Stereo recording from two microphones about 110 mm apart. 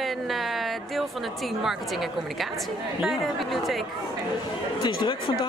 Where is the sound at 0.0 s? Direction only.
Centre (ahead or behind).